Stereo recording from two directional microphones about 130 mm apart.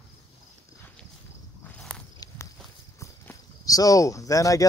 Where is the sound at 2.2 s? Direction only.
25° left (ahead or behind).